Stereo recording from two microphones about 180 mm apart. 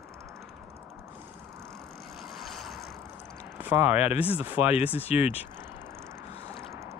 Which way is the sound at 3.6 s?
10° right (ahead or behind).